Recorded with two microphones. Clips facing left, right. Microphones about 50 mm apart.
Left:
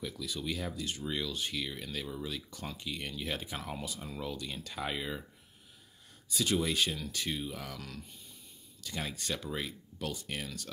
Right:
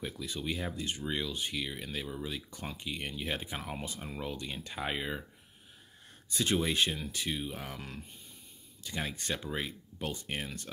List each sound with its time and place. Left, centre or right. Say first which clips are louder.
0.0 s speech: even; right
6.2 s speech: right 1 dB; right; by 7.5 s centre
7.5 s speech: right 1 dB; right
9.1 s speech: right 1 dB; right